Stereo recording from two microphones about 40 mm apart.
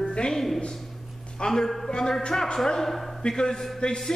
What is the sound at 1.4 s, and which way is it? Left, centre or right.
Speech, centre.